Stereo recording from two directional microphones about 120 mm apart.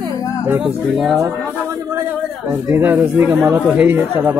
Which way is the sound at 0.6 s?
5° right (ahead or behind).